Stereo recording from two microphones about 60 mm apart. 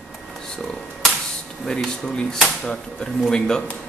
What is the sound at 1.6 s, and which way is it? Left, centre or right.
Speech, centre.